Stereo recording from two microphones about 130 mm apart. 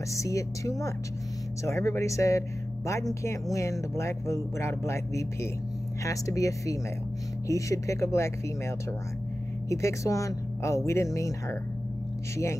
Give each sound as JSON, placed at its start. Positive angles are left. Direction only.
{"t": 0.1, "sound": "speech", "side_deg": 25}